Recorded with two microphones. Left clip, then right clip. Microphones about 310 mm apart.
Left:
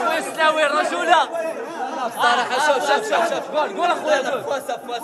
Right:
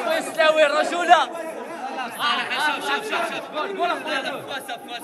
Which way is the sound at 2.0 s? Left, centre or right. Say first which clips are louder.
Left 5 dB; left.